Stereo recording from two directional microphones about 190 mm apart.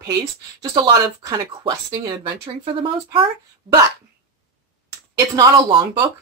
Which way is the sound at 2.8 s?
25° right (ahead or behind).